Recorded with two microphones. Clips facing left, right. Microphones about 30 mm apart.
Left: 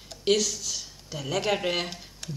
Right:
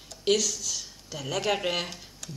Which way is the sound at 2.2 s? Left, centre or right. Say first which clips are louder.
Left 4 dB; left.